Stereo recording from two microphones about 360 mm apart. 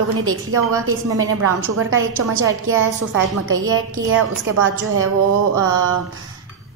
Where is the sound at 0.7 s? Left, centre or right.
Centre.